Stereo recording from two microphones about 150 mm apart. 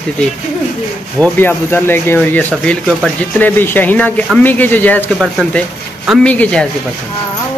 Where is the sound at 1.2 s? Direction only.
10° left (ahead or behind).